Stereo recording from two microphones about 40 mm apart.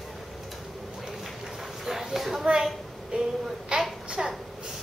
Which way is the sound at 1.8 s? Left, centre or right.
Centre.